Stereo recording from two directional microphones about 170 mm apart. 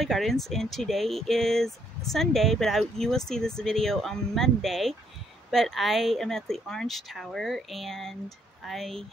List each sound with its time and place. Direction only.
0.0 s speech: centre (ahead or behind)